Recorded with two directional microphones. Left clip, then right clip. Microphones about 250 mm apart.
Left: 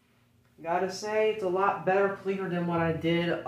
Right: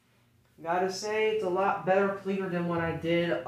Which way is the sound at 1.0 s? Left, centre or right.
Centre.